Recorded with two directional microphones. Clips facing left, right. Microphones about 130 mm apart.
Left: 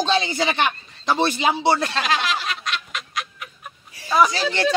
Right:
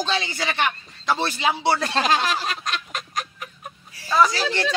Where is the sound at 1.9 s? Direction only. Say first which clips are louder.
Right 2 dB; 40° right (ahead or behind).